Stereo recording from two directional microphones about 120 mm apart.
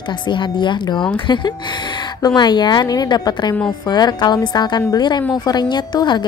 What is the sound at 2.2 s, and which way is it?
A woman's voice, 35° left (ahead or behind).